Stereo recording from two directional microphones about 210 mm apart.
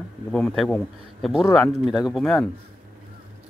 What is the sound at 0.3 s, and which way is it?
Speech, 5° left (ahead or behind).